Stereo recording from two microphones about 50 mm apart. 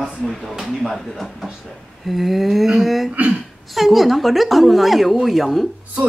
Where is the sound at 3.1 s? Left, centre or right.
Right.